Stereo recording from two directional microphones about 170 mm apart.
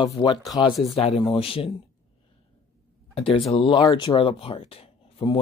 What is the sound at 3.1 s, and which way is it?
Speech, 35° left (ahead or behind).